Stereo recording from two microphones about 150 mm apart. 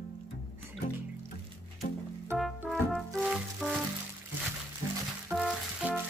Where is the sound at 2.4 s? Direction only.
Centre (ahead or behind).